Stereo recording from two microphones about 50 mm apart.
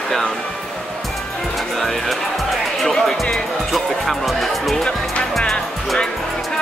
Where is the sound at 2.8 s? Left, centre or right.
Centre.